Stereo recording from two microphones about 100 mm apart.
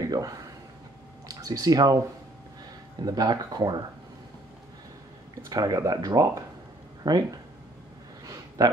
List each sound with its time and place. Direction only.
0.1 s speech: 35° right (ahead or behind)
3.0 s speech: 40° right (ahead or behind)
5.5 s speech: 40° right (ahead or behind)
8.6 s speech: 40° right (ahead or behind)